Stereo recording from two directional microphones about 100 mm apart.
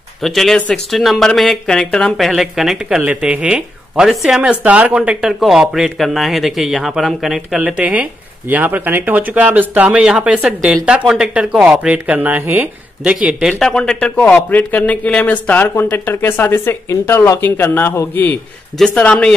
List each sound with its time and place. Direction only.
0.2 s speech: centre (ahead or behind)
3.0 s speech: 15° right (ahead or behind)
7.6 s speech: 15° right (ahead or behind)
13.6 s speech: 5° left (ahead or behind)